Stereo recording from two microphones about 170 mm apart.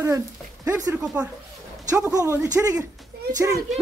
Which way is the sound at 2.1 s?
15° left (ahead or behind).